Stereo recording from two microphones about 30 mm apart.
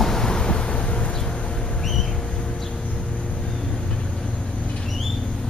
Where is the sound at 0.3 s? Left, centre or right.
Left.